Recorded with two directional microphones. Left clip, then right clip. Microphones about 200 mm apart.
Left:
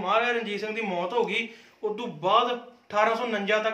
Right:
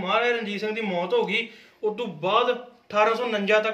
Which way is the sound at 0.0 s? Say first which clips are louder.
Right 1 dB; 15° left (ahead or behind).